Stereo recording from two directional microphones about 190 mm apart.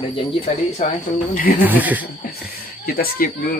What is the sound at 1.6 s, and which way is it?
Speech, 10° right (ahead or behind).